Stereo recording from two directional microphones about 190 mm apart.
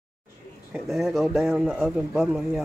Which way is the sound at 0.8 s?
Centre (ahead or behind).